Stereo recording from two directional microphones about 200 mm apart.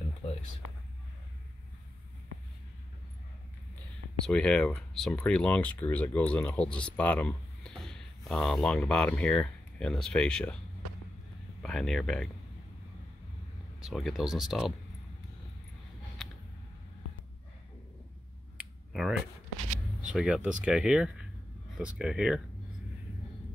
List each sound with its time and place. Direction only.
4.3 s speech: 5° left (ahead or behind)
11.6 s speech: centre (ahead or behind)
13.8 s speech: centre (ahead or behind)
18.6 s finger snapping: 5° right (ahead or behind)
20.0 s speech: 5° right (ahead or behind)